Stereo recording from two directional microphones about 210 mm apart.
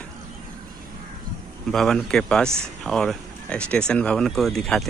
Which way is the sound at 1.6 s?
Centre (ahead or behind).